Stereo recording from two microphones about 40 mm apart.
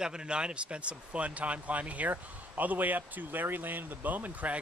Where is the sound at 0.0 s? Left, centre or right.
Right.